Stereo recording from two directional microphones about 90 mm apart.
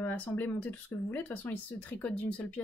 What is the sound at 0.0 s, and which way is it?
Speech, 20° left (ahead or behind).